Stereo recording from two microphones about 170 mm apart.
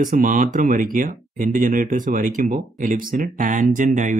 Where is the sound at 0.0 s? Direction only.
55° right (ahead or behind).